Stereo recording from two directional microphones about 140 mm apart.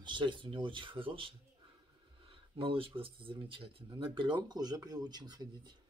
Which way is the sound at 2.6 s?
40° right (ahead or behind).